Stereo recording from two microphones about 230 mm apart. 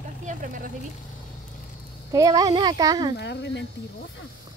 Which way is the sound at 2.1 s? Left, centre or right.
Centre.